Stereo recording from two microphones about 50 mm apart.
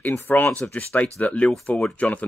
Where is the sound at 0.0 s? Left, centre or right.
Left.